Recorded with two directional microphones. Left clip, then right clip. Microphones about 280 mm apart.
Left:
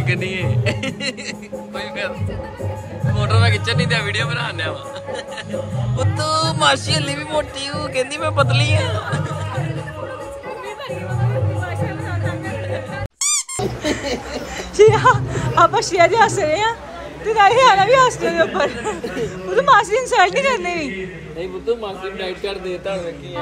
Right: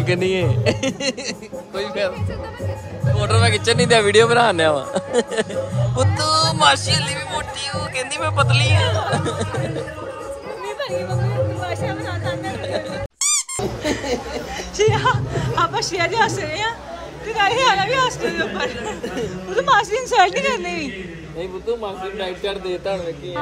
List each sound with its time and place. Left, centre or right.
0.0 s speech: centre
3.2 s speech: centre
5.9 s speech: centre
13.2 s squeak: centre
14.8 s speech: centre